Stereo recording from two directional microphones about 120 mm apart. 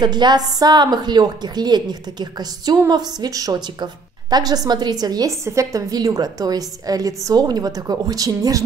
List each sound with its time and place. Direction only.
0.0 s a woman's voice: 35° right (ahead or behind)